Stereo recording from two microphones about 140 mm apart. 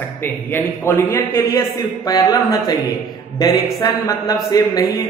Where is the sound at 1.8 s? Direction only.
30° left (ahead or behind).